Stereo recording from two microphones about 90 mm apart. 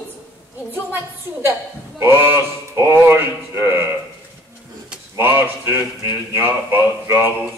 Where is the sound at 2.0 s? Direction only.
25° right (ahead or behind).